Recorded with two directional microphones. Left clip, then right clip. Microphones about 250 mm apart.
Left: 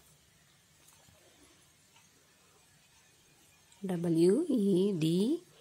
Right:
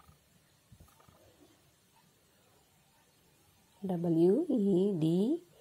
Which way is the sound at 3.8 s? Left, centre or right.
Centre.